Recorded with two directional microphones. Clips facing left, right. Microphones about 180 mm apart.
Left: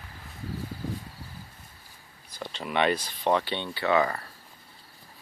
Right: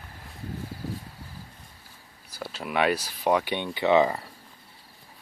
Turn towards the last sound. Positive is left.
turn(degrees=-20)  # may be behind; listen again after turning